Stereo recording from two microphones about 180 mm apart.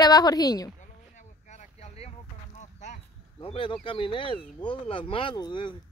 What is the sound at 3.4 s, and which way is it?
A woman's voice, 30° left (ahead or behind).